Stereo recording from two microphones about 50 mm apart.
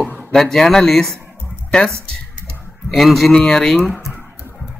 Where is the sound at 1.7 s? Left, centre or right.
Centre.